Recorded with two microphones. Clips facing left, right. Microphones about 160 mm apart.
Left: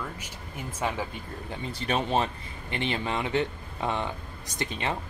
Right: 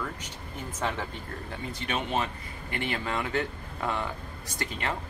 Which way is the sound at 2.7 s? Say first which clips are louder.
Left 2 dB; 20° left (ahead or behind).